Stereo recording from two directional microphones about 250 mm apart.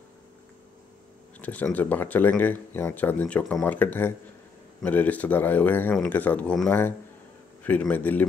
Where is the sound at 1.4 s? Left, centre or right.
Centre.